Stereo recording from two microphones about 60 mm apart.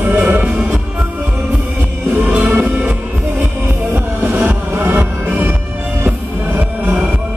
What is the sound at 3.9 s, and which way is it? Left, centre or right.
Music, right.